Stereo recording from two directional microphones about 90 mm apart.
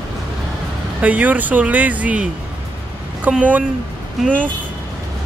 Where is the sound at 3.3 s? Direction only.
15° right (ahead or behind).